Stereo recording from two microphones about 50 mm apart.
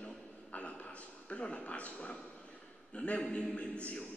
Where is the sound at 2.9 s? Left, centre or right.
Left.